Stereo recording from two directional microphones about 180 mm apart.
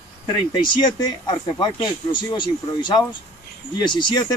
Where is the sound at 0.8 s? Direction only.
25° left (ahead or behind).